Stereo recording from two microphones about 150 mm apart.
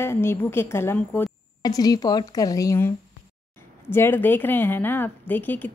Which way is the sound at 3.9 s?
15° left (ahead or behind).